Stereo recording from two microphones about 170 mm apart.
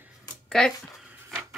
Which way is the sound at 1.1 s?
10° right (ahead or behind).